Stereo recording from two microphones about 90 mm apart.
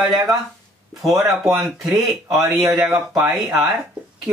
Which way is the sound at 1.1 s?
35° right (ahead or behind).